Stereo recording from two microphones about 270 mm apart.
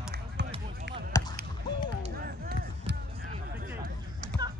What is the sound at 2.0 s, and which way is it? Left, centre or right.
Music, right.